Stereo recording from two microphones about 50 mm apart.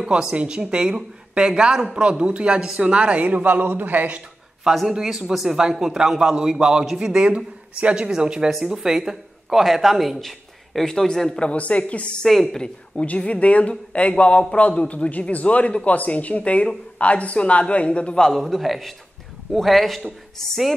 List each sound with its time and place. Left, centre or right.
0.0 s speech: centre; by 4.2 s right
4.8 s a man's voice: centre
7.2 s a man's voice: right; by 11.3 s centre
11.3 s speech: left
12.2 s a woman's voice: centre
13.2 s speech: left
18.3 s a man's voice: centre